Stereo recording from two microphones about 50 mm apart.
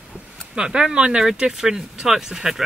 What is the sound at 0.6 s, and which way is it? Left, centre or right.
Speech, centre.